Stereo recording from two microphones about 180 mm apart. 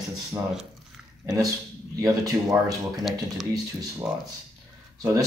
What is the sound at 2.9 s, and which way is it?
Speech, centre (ahead or behind).